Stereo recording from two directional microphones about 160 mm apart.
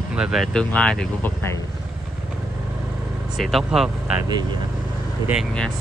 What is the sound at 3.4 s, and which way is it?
Speech, centre (ahead or behind).